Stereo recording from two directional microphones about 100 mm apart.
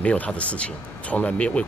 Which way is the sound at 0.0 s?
15° left (ahead or behind).